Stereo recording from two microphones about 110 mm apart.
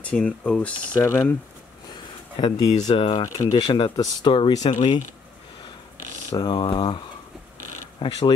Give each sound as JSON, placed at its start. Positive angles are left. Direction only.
{"t": 0.0, "sound": "speech", "side_deg": 10}
{"t": 0.9, "sound": "speech", "side_deg": 25}
{"t": 2.3, "sound": "speech", "side_deg": 40}
{"t": 3.0, "sound": "speech", "side_deg": 50}
{"t": 3.3, "sound": "speech", "side_deg": 40}
{"t": 3.9, "sound": "speech", "side_deg": 35}
{"t": 4.3, "sound": "speech", "side_deg": 45}
{"t": 6.3, "sound": "speech", "side_deg": 45}
{"t": 8.0, "sound": "speech", "side_deg": 45}